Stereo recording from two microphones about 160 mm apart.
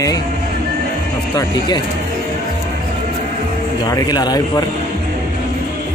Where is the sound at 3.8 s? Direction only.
25° left (ahead or behind).